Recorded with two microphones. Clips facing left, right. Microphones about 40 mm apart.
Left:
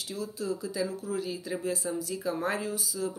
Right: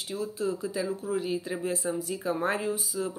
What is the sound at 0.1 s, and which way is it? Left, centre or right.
Speech, right.